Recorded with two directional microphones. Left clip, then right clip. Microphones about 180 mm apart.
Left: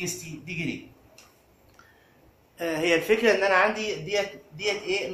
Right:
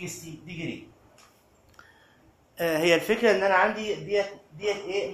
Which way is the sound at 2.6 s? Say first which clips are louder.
Right 2 dB; 55° right (ahead or behind).